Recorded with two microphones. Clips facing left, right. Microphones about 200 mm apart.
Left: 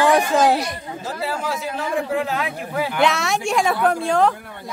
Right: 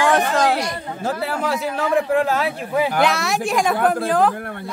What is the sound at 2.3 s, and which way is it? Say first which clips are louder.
Speech: right 4 dB; 35° right (ahead or behind).